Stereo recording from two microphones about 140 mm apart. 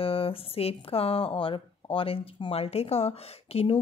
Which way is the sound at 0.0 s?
40° left (ahead or behind).